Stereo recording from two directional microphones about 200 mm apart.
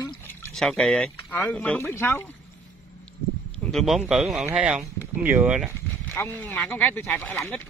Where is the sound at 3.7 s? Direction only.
Centre (ahead or behind).